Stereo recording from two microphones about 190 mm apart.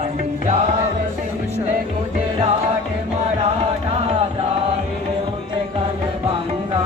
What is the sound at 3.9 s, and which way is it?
Music, 30° right (ahead or behind).